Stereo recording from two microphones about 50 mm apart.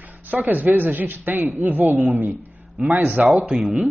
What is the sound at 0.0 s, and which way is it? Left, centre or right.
Speech, right.